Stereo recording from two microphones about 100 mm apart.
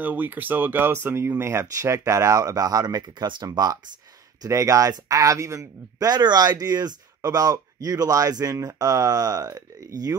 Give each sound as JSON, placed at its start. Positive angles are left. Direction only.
{"t": 0.0, "sound": "speech", "side_deg": -20}